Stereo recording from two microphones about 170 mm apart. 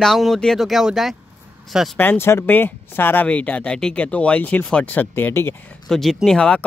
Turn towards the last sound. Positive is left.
turn(degrees=5)  # may be behind; listen again after turning